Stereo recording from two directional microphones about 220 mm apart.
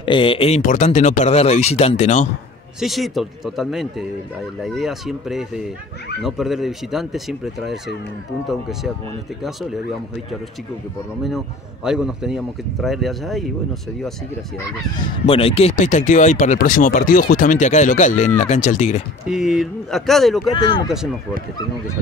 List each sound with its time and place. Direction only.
0.0 s speech: 25° left (ahead or behind)
2.8 s a man's voice: centre (ahead or behind)
11.2 s a man's voice: centre (ahead or behind)
15.2 s speech: 25° left (ahead or behind)
19.2 s a man's voice: centre (ahead or behind)
20.5 s speech: 20° left (ahead or behind)